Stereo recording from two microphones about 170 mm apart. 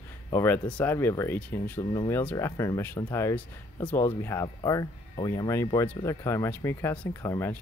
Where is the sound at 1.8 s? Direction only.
25° left (ahead or behind).